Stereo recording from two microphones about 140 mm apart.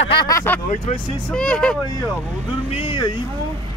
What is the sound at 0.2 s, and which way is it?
Speech, 20° left (ahead or behind).